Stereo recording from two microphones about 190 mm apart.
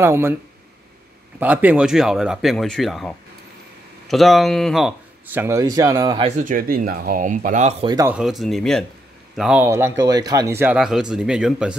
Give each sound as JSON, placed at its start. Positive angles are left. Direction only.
{"t": 0.0, "sound": "speech", "side_deg": -15}
{"t": 1.4, "sound": "speech", "side_deg": -10}
{"t": 6.2, "sound": "speech", "side_deg": -40}
{"t": 7.8, "sound": "speech", "side_deg": -20}
{"t": 8.1, "sound": "speech", "side_deg": -5}
{"t": 9.7, "sound": "speech", "side_deg": -15}